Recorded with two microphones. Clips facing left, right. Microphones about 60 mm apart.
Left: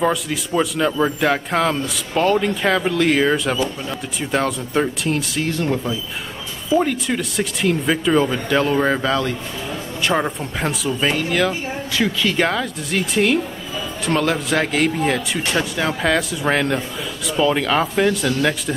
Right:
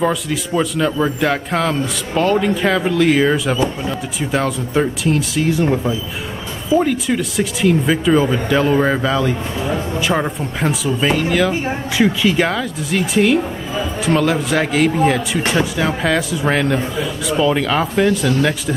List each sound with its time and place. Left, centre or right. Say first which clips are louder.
0.0 s a man's voice: right 1 dB; centre
5.6 s speech: right 4 dB; centre
6.7 s a man's voice: right 3 dB; centre